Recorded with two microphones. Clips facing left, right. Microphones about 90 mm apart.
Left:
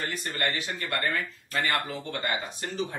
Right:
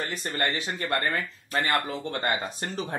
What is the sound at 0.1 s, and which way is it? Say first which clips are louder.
Speech: right 2 dB; 30° right (ahead or behind).